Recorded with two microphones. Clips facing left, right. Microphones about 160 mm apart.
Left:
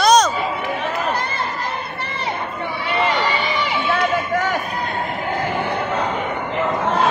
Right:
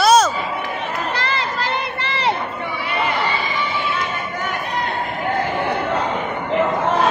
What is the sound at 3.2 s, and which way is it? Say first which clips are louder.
Run: left 1 dB; 90° left.